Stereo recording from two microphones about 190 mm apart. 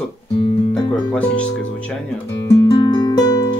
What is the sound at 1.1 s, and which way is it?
Speech, 5° left (ahead or behind).